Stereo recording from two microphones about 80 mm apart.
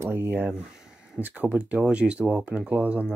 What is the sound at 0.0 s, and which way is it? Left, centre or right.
Speech, right.